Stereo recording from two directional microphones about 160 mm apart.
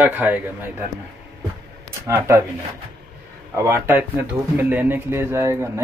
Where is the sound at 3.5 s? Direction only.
15° right (ahead or behind).